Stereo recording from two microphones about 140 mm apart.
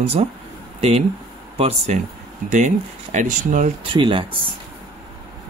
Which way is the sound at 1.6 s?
45° right (ahead or behind).